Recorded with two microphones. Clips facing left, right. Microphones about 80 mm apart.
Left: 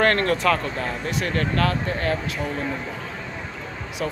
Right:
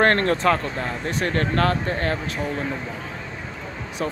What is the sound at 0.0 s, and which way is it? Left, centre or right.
Speech, right.